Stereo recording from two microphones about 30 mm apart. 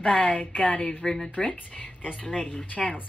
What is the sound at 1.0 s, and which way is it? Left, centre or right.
Speech, centre.